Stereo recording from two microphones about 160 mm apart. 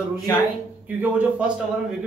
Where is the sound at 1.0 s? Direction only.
10° right (ahead or behind).